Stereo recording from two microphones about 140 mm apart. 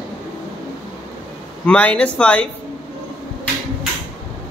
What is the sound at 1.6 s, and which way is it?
Speech, 10° left (ahead or behind).